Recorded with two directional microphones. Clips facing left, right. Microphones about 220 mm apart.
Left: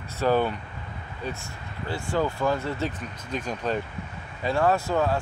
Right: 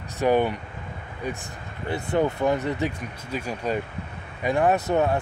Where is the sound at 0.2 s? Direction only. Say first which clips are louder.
Right 2 dB; 15° right (ahead or behind).